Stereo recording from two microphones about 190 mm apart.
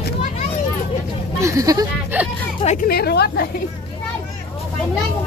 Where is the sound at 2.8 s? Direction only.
55° left (ahead or behind).